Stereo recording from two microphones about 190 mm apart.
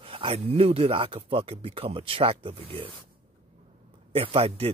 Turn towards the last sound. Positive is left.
turn(degrees=-30)  # may be behind; listen again after turning